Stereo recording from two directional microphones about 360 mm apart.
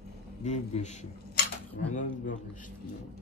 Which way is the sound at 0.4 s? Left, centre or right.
Centre.